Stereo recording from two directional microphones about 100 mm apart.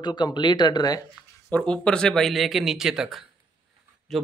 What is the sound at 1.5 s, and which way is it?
A man's voice, 10° left (ahead or behind).